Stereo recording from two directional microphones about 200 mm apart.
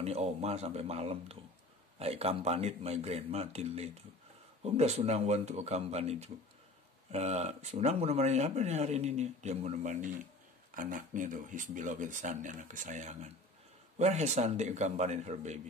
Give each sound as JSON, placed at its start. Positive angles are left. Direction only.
{"t": 0.0, "sound": "speech", "side_deg": -30}